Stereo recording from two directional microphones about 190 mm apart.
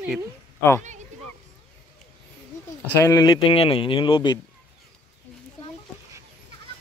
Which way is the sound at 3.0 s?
20° left (ahead or behind).